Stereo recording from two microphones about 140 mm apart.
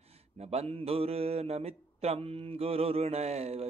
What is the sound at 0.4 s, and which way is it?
Speech, 50° right (ahead or behind).